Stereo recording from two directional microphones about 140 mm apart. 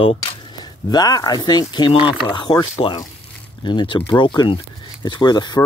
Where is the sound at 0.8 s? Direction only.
25° left (ahead or behind).